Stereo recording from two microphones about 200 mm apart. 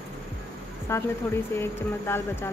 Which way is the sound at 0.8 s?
10° left (ahead or behind).